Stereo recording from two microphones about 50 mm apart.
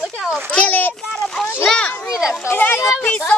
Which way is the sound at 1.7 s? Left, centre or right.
Centre.